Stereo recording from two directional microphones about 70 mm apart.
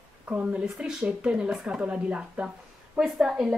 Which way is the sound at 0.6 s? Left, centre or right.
Centre.